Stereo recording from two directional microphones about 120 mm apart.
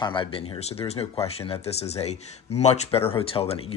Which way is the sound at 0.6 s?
55° left (ahead or behind).